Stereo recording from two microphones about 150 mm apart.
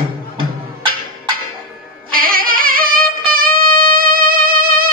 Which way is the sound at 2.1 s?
70° right (ahead or behind).